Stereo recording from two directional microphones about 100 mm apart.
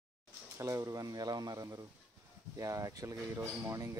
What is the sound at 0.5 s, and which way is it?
Speech, 30° right (ahead or behind).